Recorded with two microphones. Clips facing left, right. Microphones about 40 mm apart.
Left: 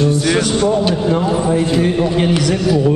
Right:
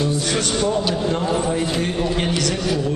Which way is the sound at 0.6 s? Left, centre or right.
Centre.